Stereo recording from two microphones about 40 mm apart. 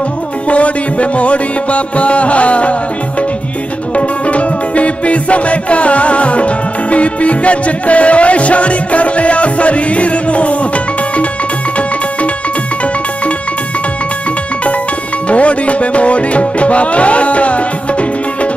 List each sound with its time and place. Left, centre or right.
0.5 s music: left
15.2 s music: left